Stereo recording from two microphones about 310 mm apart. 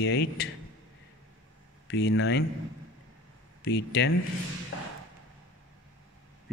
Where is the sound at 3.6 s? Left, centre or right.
Left.